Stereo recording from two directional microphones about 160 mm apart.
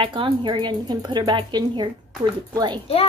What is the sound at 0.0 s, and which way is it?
A woman's voice, 30° right (ahead or behind).